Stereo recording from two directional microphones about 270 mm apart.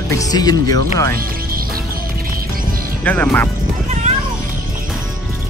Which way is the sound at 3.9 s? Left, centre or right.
Right.